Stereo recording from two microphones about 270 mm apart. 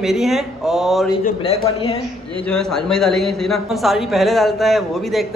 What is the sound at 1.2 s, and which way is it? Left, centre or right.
Speech, left.